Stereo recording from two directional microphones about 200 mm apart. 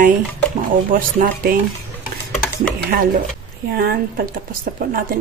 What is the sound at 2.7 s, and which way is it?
Speech, 50° right (ahead or behind).